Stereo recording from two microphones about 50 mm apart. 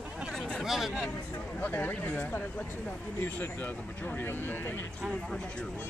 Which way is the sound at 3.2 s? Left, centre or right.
Left.